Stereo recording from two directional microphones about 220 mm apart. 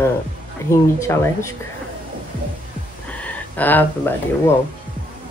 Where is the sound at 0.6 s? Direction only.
10° left (ahead or behind).